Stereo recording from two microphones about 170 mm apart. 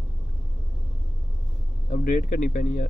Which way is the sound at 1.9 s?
55° left (ahead or behind).